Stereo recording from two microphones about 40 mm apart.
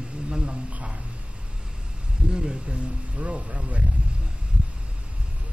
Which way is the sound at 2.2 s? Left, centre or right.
Right.